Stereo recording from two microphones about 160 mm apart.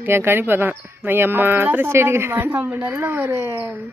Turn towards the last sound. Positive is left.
turn(degrees=-15)  # may be behind; listen again after turning